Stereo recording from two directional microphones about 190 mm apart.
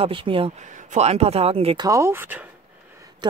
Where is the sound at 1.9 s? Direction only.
15° right (ahead or behind).